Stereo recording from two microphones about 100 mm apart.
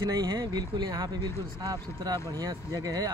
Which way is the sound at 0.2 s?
40° right (ahead or behind).